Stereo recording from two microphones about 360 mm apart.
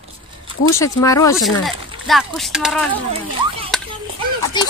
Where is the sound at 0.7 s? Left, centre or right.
Centre.